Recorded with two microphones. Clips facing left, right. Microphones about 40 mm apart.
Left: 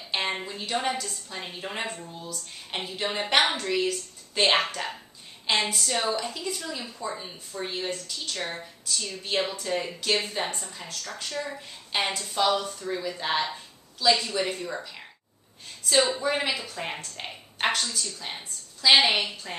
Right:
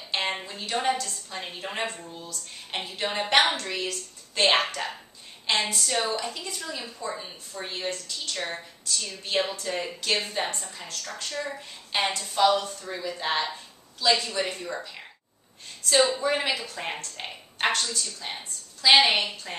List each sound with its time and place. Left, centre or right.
0.4 s a woman's voice: centre
15.9 s a woman's voice: centre